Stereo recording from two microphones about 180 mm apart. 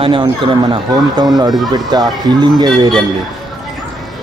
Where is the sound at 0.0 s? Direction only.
30° right (ahead or behind).